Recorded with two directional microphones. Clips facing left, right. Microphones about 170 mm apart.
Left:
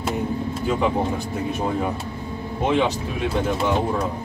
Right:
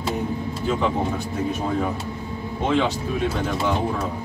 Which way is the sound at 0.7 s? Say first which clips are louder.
Left 1 dB; 10° left (ahead or behind).